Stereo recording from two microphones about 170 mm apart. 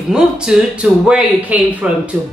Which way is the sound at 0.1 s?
5° right (ahead or behind).